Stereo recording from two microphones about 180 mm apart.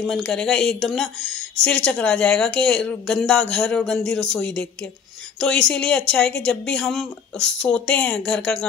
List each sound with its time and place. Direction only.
0.0 s speech: centre (ahead or behind)